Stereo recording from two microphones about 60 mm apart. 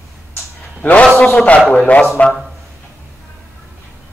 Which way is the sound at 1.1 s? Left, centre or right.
Left.